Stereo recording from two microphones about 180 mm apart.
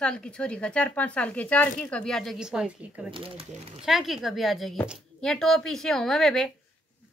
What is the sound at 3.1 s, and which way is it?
Speech, 30° right (ahead or behind).